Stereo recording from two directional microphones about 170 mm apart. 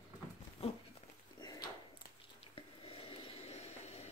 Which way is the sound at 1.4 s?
25° left (ahead or behind).